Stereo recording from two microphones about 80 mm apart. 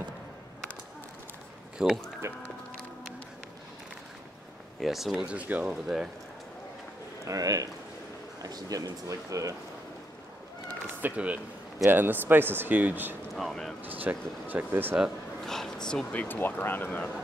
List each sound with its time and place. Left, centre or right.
1.8 s speech: centre
2.2 s music: right
4.7 s speech: centre
7.2 s speech: right
11.0 s speech: right
13.3 s speech: centre
13.8 s speech: right
15.4 s speech: centre; by 17.1 s left